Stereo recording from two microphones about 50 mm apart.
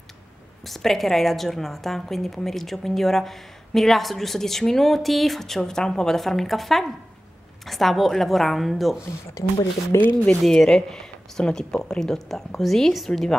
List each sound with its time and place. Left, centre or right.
0.7 s a woman's voice: centre
9.9 s speech: left
10.4 s a woman's voice: centre